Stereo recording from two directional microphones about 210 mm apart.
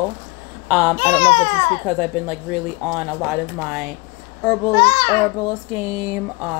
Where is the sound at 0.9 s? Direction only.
30° left (ahead or behind).